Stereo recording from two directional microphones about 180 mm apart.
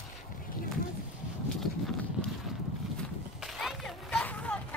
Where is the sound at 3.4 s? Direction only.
Centre (ahead or behind).